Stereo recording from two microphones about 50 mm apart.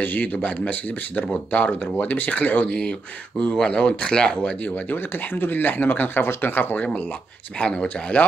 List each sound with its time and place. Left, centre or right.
0.0 s speech: left
4.6 s speech: left
6.8 s speech: left